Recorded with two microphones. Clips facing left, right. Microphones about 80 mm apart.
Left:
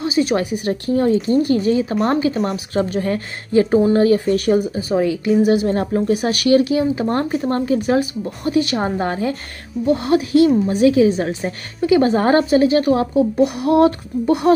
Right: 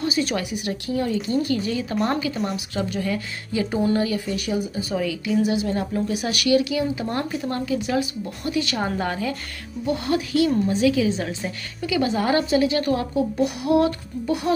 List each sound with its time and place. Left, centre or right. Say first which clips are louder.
0.4 s speech: left 7 dB; left
4.7 s speech: left 7 dB; left
10.5 s a woman's voice: left 5 dB; centre
10.8 s speech: left 8 dB; left
11.1 s speech: left 6 dB; left
13.4 s speech: left 5 dB; left